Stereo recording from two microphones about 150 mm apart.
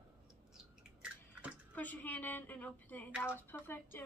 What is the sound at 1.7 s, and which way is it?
A woman's voice, 10° left (ahead or behind).